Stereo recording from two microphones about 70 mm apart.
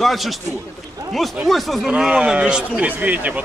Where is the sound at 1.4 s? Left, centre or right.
Centre.